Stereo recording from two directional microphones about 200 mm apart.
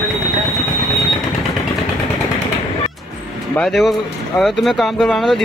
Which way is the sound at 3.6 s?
Centre (ahead or behind).